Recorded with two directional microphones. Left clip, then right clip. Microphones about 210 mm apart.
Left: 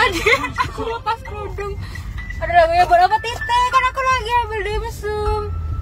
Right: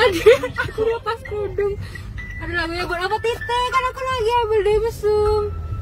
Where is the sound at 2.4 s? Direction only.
20° right (ahead or behind).